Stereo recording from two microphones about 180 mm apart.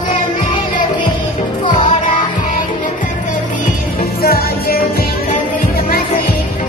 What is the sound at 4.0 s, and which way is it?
Music, 55° left (ahead or behind).